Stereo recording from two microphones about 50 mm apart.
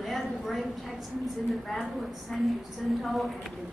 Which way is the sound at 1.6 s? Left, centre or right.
Centre.